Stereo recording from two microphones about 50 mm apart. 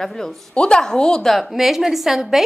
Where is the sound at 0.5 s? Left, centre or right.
Centre.